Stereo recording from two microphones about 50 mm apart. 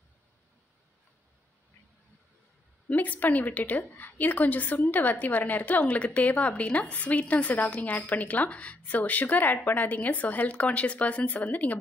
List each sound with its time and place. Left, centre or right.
2.9 s a woman's voice: left